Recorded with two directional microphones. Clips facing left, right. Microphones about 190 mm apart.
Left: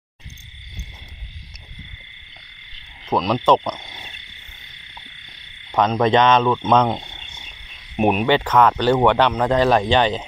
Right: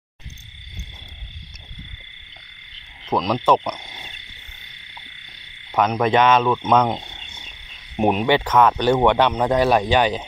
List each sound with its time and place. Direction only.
3.2 s speech: 15° right (ahead or behind)
5.8 s speech: 5° right (ahead or behind)